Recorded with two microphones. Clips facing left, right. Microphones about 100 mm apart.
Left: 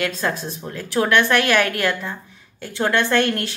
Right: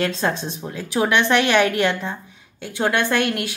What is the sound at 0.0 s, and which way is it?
Speech, 25° right (ahead or behind).